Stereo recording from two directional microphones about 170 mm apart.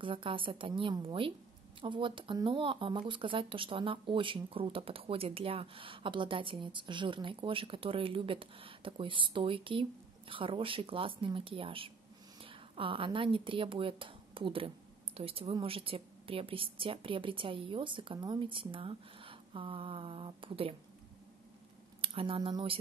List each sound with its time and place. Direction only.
0.0 s speech: 30° right (ahead or behind)
22.0 s speech: 30° right (ahead or behind)